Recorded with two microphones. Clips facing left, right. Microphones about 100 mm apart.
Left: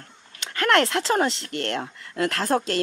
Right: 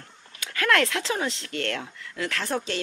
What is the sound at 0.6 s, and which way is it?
Speech, 30° left (ahead or behind).